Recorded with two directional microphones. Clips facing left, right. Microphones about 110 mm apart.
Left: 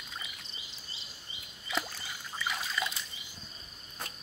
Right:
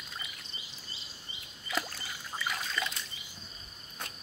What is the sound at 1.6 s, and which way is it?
Trickle, 5° left (ahead or behind).